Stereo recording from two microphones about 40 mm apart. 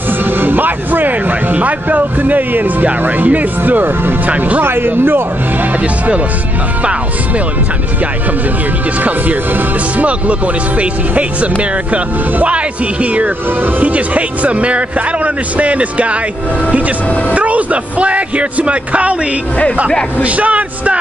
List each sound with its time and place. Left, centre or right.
0.2 s music: right
3.3 s speech: right
4.6 s speech: right
9.9 s a man's voice: right
17.3 s a man's voice: right
20.2 s a man's voice: right